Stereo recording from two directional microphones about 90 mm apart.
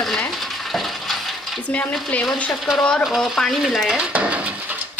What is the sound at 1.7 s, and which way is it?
Speech, 15° left (ahead or behind).